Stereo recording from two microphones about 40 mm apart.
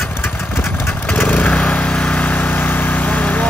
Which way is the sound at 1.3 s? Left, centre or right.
Left.